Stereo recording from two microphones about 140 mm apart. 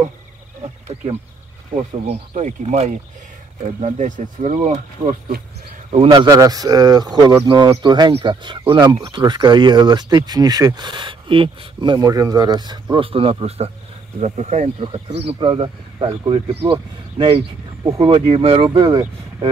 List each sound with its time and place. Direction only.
2.0 s speech: 55° right (ahead or behind)
5.9 s a man's voice: 45° right (ahead or behind)
6.1 s speech: 25° right (ahead or behind); by 14.7 s 55° right (ahead or behind)
14.8 s speech: 40° right (ahead or behind)
17.8 s speech: 40° right (ahead or behind)